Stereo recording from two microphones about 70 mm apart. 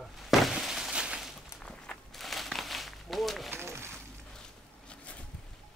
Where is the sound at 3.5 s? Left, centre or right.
Right.